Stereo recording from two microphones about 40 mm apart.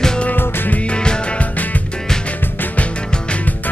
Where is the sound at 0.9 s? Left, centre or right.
Left.